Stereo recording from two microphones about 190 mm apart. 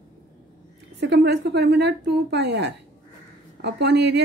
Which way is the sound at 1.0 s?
65° right (ahead or behind).